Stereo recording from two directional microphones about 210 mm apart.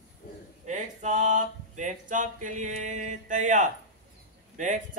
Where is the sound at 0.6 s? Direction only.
35° right (ahead or behind).